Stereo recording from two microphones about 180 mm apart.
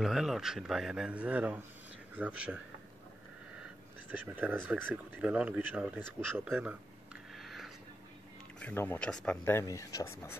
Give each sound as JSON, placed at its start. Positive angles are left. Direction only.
{"t": 0.0, "sound": "a man's voice", "side_deg": 0}
{"t": 4.4, "sound": "speech", "side_deg": -10}
{"t": 7.3, "sound": "a sound", "side_deg": 0}
{"t": 8.5, "sound": "speech", "side_deg": 10}